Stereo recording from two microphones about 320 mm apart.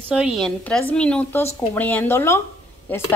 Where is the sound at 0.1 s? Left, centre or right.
Centre.